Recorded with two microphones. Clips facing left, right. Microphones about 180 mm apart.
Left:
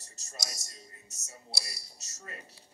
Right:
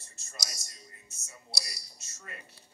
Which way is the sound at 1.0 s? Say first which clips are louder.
Left 1 dB; 40° left (ahead or behind).